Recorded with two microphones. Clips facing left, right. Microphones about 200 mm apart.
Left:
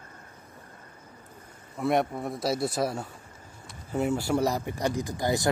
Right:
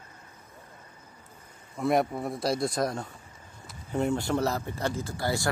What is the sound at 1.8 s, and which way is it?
Speech, centre (ahead or behind).